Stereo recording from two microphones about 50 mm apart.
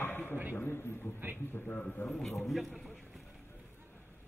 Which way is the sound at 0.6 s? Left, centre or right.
Left.